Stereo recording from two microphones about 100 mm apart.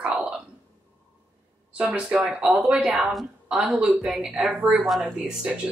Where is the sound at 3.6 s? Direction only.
15° right (ahead or behind).